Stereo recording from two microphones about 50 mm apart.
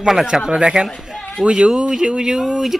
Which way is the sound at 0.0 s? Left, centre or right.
Centre.